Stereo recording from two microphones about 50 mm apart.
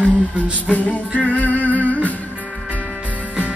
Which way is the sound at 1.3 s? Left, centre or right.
Left.